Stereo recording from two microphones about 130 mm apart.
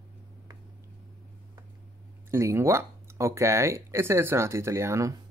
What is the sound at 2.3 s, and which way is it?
Speech, 20° right (ahead or behind).